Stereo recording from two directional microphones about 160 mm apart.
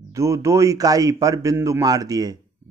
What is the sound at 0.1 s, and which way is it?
Mantra, 20° right (ahead or behind).